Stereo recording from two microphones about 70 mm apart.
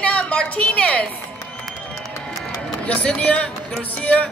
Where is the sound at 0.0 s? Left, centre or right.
Centre.